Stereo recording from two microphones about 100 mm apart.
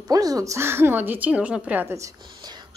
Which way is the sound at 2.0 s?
40° right (ahead or behind).